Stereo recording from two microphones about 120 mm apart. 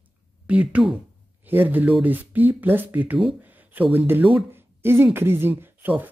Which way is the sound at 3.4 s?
15° right (ahead or behind).